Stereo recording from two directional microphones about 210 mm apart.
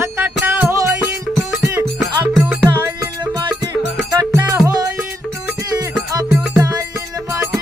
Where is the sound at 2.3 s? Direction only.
5° right (ahead or behind).